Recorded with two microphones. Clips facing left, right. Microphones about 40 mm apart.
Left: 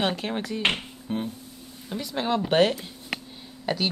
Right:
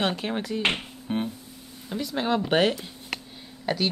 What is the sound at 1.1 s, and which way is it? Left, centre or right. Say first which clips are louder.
Speech: right 2 dB; right.